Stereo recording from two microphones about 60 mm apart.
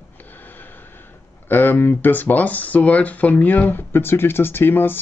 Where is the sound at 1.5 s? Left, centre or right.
Left.